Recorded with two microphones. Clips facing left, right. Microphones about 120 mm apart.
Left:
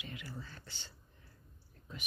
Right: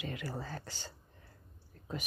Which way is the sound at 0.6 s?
40° right (ahead or behind).